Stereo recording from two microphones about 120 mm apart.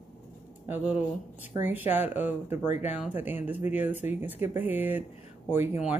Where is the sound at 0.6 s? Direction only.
15° right (ahead or behind).